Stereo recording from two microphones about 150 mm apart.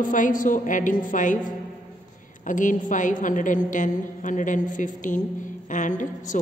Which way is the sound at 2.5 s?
60° left (ahead or behind).